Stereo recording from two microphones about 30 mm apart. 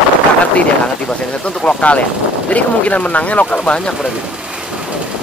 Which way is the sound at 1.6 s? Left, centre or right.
Left.